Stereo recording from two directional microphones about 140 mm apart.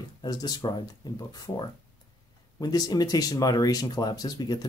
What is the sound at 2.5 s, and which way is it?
Speech, 25° left (ahead or behind).